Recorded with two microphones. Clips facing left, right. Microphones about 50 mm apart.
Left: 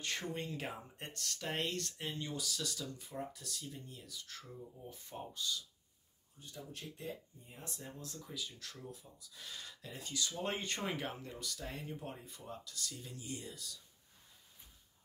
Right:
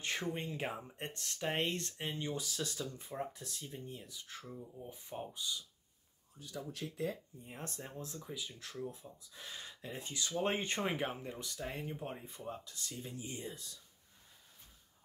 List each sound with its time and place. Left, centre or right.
0.0 s speech: centre
7.4 s speech: right
7.8 s speech: right